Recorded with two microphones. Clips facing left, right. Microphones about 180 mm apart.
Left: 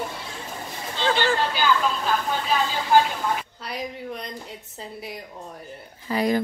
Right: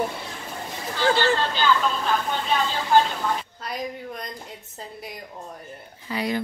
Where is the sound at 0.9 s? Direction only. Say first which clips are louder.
Right 1 dB; 20° left (ahead or behind); by 4.2 s centre (ahead or behind).